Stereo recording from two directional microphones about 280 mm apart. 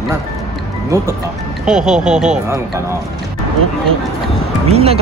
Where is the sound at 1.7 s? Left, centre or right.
Centre.